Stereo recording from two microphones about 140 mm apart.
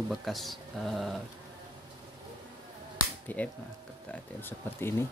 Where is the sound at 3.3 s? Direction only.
10° left (ahead or behind).